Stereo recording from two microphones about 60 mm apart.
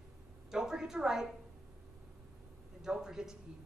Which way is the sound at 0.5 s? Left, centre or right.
Centre.